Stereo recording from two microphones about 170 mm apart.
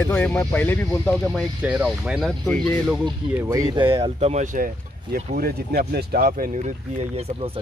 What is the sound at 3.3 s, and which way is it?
Speech, 15° right (ahead or behind).